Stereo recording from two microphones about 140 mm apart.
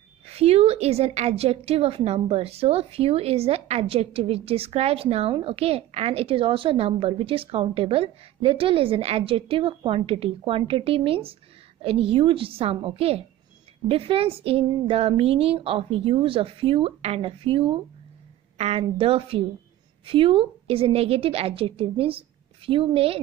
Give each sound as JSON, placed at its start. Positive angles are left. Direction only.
{"t": 0.3, "sound": "a woman's voice", "side_deg": -45}